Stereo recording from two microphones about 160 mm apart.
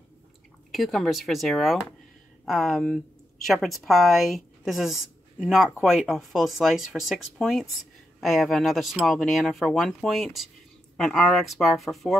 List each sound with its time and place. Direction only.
0.7 s speech: centre (ahead or behind)